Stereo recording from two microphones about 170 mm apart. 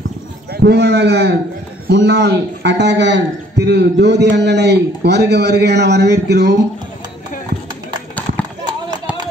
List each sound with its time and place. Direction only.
0.5 s a man's voice: 75° right (ahead or behind)
1.9 s a man's voice: 90° right